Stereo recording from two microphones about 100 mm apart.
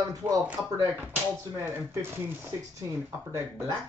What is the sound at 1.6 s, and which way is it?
Speech, 25° right (ahead or behind).